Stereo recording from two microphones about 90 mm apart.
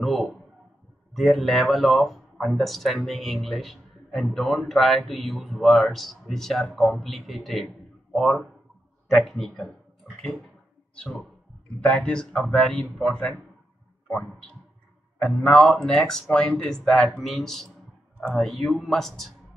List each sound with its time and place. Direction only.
0.0 s a sound: centre (ahead or behind)
1.1 s speech: centre (ahead or behind)
11.8 s a man's voice: 15° left (ahead or behind)
15.2 s a man's voice: 10° left (ahead or behind)